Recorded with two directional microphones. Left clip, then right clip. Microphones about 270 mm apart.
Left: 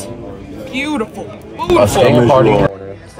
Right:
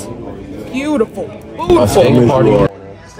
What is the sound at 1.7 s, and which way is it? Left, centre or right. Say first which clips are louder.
Speech: even; centre.